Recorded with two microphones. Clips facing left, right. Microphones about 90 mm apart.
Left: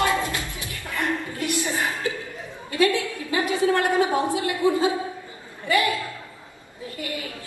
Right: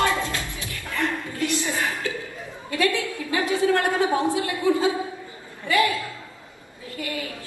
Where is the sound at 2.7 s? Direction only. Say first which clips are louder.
Left 2 dB; 20° left (ahead or behind).